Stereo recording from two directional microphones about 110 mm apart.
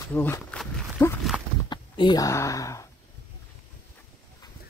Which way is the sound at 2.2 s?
30° left (ahead or behind).